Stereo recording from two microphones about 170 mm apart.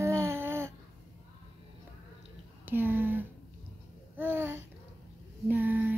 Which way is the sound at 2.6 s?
10° right (ahead or behind).